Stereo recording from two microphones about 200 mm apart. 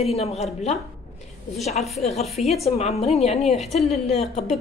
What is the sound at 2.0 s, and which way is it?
A woman's voice, 30° left (ahead or behind).